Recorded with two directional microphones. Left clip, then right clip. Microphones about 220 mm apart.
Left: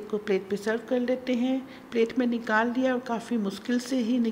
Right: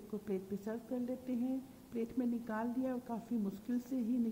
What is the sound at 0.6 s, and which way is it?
A woman's voice, 15° left (ahead or behind).